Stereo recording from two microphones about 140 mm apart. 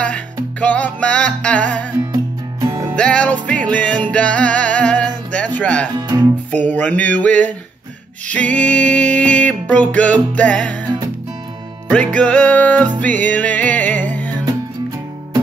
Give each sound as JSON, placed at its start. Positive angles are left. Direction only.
{"t": 0.6, "sound": "music", "side_deg": 10}
{"t": 3.0, "sound": "music", "side_deg": 10}
{"t": 5.9, "sound": "music", "side_deg": -30}
{"t": 6.5, "sound": "music", "side_deg": 10}
{"t": 11.9, "sound": "music", "side_deg": 10}